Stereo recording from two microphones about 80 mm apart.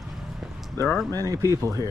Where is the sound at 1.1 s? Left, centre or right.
Right.